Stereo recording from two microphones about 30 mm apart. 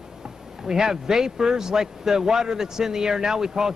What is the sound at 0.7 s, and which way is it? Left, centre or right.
A man's voice, centre.